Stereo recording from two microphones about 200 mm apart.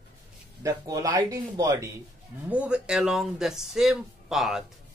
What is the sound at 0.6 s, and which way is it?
Speech, 15° right (ahead or behind).